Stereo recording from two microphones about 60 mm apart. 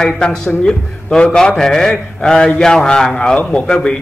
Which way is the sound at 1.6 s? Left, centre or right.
Centre.